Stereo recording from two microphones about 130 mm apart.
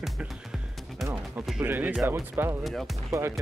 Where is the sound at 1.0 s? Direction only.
15° right (ahead or behind).